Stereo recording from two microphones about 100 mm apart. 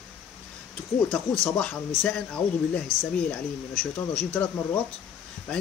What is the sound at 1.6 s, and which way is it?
Speech, 10° left (ahead or behind).